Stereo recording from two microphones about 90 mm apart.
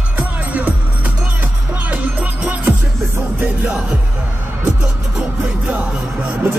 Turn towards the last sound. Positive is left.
turn(degrees=-20)  # may be behind; listen again after turning